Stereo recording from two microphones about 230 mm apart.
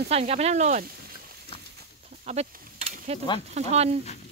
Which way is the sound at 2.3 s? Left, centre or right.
Right.